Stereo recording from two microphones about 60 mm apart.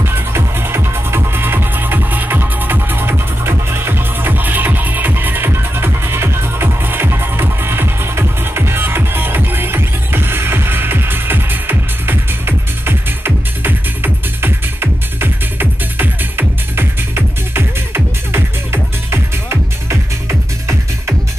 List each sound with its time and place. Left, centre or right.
0.0 s music: right